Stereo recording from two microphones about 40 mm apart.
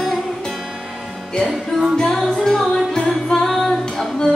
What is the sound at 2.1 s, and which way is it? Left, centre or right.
Music, centre.